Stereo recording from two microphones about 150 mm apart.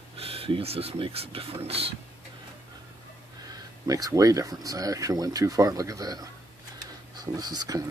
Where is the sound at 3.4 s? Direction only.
25° right (ahead or behind).